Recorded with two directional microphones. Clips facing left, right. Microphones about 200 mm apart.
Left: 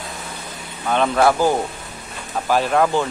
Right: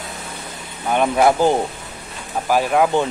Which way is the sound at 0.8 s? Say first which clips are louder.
Right 1 dB; 15° right (ahead or behind).